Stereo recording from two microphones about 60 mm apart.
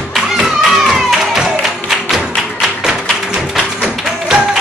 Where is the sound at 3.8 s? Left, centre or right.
Centre.